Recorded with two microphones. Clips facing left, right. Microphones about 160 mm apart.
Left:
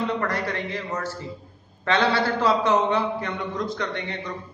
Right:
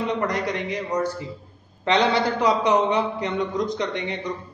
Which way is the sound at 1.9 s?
20° right (ahead or behind).